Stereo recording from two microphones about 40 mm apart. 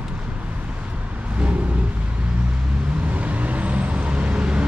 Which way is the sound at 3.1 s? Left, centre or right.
Right.